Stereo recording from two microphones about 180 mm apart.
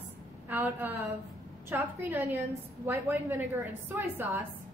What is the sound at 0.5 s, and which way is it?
A woman's voice, 10° right (ahead or behind).